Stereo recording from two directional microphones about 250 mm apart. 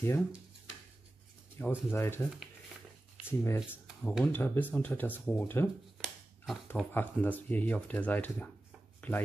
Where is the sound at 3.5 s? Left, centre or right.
Centre.